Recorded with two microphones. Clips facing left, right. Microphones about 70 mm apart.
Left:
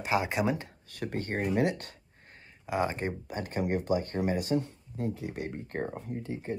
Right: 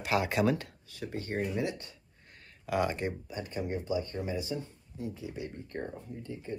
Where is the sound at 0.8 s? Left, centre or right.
Left.